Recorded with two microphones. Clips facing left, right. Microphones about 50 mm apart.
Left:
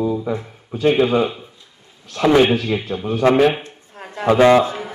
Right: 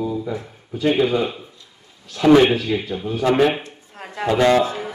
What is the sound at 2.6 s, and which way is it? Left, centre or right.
Speech, left.